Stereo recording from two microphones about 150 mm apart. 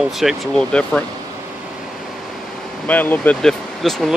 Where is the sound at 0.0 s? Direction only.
Centre (ahead or behind).